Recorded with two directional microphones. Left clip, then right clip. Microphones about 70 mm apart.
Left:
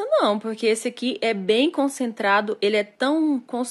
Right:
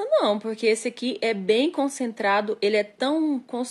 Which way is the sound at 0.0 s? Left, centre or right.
Left.